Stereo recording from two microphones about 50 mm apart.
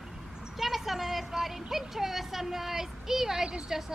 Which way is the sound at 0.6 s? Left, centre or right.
Centre.